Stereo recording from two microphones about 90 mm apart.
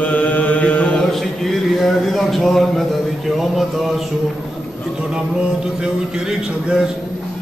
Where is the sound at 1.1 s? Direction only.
Centre (ahead or behind).